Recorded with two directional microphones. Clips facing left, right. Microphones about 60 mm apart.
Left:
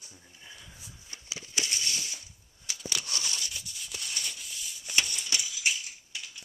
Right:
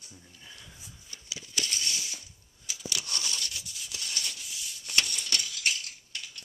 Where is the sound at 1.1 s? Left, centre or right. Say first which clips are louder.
Left 1 dB; left.